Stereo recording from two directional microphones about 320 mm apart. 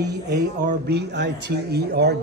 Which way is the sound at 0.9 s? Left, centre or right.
Right.